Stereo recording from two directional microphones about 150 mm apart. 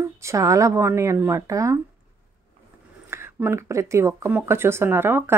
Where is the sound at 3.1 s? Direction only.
15° right (ahead or behind).